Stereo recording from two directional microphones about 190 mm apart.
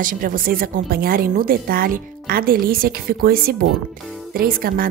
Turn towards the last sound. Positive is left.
turn(degrees=-50)  # may be behind; listen again after turning